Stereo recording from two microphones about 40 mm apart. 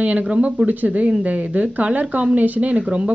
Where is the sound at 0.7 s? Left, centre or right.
Right.